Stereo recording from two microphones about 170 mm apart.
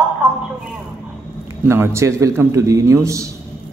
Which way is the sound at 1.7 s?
15° right (ahead or behind).